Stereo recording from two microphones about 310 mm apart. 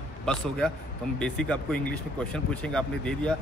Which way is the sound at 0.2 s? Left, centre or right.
Centre.